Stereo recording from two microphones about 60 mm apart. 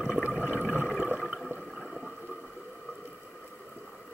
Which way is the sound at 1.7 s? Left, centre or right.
Centre.